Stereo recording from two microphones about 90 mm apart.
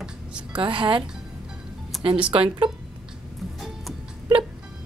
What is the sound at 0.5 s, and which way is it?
Speech, 65° right (ahead or behind).